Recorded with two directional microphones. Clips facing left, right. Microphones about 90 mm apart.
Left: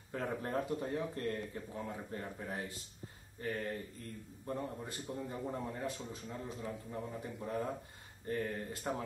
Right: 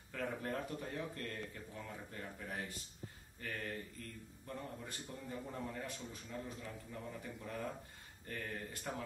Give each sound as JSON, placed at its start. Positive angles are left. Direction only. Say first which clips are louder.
{"t": 0.1, "sound": "a man's voice", "louder": "left 4 dB", "side_deg": 30}